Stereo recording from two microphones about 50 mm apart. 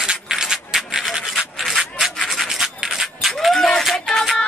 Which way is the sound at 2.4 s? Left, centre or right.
Centre.